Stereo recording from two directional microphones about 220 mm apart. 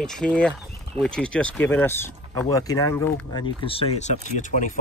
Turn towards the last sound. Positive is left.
turn(degrees=35)  # may be behind; listen again after turning